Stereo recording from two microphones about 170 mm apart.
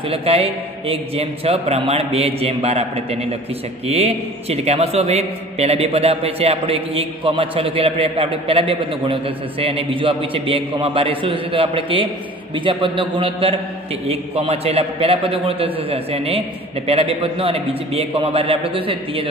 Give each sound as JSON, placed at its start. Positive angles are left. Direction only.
{"t": 0.1, "sound": "a man's voice", "side_deg": -35}